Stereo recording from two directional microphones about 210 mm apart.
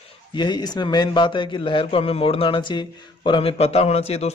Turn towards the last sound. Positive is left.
turn(degrees=30)  # may be behind; listen again after turning